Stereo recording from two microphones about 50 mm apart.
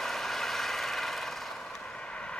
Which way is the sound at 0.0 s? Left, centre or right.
Centre.